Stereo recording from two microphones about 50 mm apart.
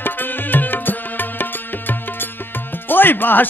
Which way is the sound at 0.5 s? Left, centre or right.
Left.